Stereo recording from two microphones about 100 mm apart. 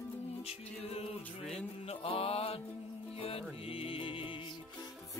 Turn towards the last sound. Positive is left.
turn(degrees=60)  # may be behind; listen again after turning